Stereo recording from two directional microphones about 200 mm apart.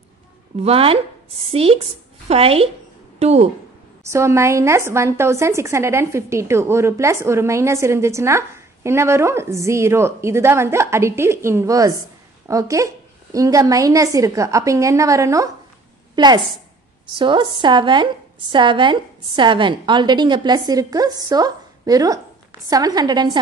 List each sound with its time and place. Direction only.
0.6 s a woman's voice: 30° right (ahead or behind)
4.0 s a woman's voice: 15° right (ahead or behind)